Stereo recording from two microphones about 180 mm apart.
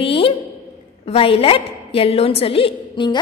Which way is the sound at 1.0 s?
30° left (ahead or behind).